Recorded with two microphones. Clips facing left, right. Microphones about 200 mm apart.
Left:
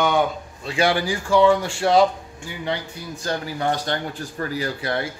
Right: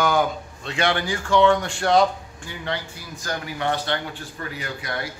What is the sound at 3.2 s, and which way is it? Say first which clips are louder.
A man's voice: left 3 dB; 30° left (ahead or behind).